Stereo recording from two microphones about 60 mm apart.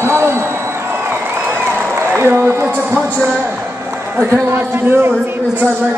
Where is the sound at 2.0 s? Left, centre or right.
Right.